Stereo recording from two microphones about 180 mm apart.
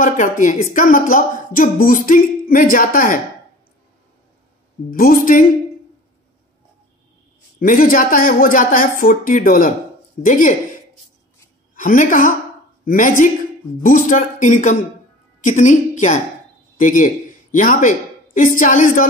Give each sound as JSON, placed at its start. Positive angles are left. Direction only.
{"t": 0.0, "sound": "speech", "side_deg": 45}
{"t": 4.9, "sound": "speech", "side_deg": 50}
{"t": 7.5, "sound": "speech", "side_deg": 50}
{"t": 11.7, "sound": "a woman's voice", "side_deg": 50}